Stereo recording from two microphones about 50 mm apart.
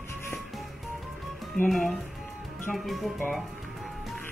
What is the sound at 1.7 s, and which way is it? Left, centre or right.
Speech, centre.